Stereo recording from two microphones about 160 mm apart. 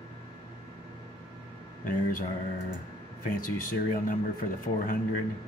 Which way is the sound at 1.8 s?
55° left (ahead or behind).